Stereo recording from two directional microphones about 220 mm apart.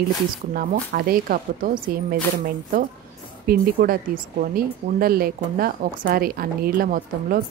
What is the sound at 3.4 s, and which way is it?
Speech, 40° right (ahead or behind).